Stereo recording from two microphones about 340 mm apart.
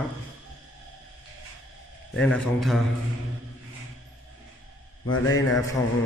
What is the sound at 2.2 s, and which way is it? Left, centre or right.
Speech, centre.